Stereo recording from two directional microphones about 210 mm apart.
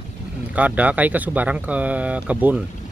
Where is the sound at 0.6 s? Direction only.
5° right (ahead or behind).